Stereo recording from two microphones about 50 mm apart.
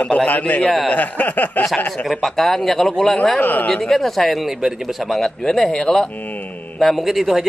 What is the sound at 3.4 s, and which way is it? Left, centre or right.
Speech, left.